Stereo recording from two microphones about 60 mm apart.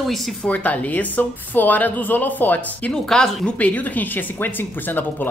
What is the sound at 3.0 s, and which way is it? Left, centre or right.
Speech, centre.